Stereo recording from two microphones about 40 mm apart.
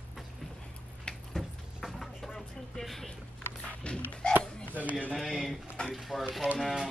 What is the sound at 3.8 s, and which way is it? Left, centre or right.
Music, left.